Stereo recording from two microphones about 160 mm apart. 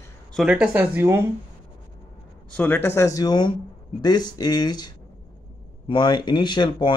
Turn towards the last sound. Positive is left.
turn(degrees=30)  # may be behind; listen again after turning